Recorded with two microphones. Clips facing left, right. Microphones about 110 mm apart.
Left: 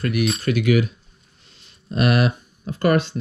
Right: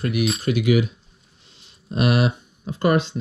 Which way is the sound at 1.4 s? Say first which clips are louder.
Left 1 dB; 15° right (ahead or behind).